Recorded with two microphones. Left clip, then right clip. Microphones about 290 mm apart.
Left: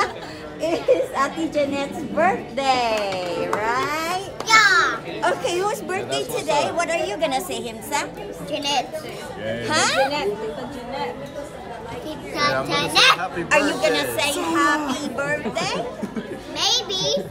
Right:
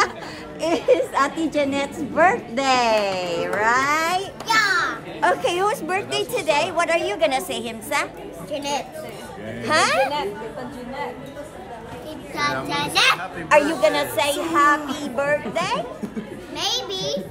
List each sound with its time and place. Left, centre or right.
0.6 s a woman's voice: right
4.5 s a sound: centre
5.2 s a woman's voice: right
8.5 s a child's voice: centre
9.7 s a woman's voice: right
12.4 s a child's voice: centre
13.5 s a woman's voice: right
16.5 s a child's voice: centre